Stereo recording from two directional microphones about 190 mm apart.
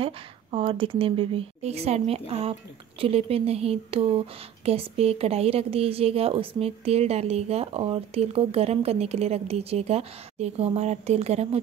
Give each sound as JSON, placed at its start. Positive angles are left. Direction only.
{"t": 0.0, "sound": "a woman's voice", "side_deg": -30}